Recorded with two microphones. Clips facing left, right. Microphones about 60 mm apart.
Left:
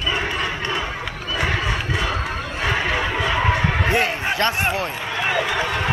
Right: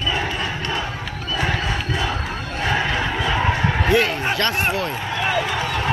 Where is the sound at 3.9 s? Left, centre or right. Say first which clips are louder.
Right 5 dB; left.